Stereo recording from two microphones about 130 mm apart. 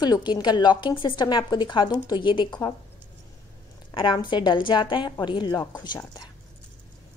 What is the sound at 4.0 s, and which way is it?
A woman's voice, 40° left (ahead or behind).